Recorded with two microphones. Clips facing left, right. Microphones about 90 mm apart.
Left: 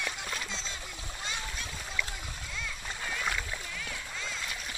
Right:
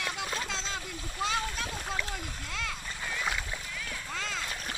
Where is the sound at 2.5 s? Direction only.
80° right.